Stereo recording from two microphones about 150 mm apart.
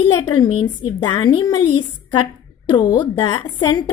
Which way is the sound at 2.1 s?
30° left (ahead or behind).